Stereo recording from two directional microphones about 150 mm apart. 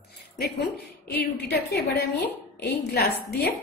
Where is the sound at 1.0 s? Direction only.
90° left.